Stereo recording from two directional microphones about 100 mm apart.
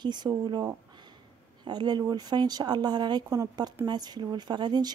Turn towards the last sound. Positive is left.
turn(degrees=-45)  # may be behind; listen again after turning